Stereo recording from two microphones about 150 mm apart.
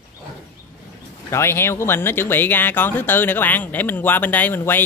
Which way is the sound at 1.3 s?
15° left (ahead or behind).